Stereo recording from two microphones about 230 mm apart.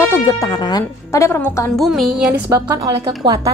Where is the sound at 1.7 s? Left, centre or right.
Centre.